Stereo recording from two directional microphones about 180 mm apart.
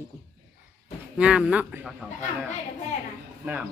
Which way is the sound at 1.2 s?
5° right (ahead or behind).